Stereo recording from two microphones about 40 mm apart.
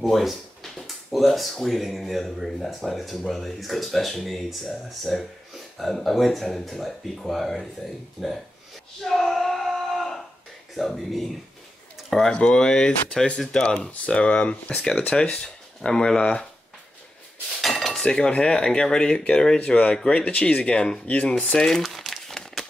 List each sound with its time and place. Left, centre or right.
0.1 s a sound: centre
1.5 s speech: centre
9.0 s a sound: centre
10.8 s speech: centre
12.3 s speech: centre
15.4 s speech: left
17.6 s cutlery: centre
18.0 s speech: left
21.5 s speech: centre
21.8 s crumpling: centre